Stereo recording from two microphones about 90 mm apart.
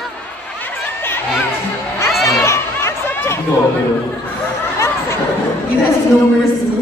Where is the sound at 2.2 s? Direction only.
30° left (ahead or behind).